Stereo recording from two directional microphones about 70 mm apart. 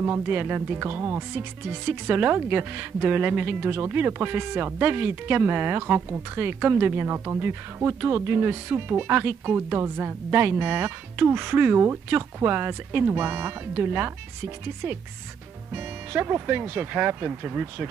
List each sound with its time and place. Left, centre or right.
0.0 s a woman's voice: right
15.7 s speech: right